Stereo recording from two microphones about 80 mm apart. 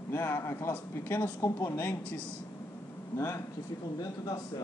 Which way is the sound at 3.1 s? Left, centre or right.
Left.